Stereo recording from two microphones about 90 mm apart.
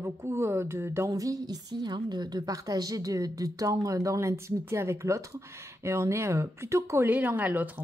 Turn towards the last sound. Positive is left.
turn(degrees=-20)  # may be behind; listen again after turning